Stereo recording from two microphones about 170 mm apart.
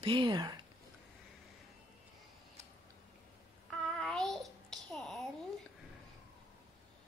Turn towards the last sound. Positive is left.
turn(degrees=0)  # may be behind; listen again after turning